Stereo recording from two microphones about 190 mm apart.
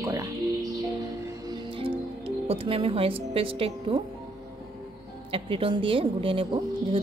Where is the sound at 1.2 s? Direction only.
25° right (ahead or behind).